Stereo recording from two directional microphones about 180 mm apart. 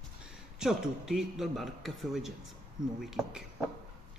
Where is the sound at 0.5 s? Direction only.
5° right (ahead or behind).